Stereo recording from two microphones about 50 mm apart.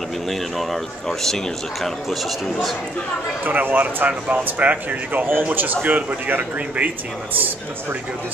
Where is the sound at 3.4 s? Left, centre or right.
Right.